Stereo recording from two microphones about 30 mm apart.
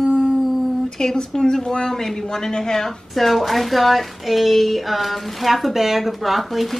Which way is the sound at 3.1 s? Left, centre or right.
Centre.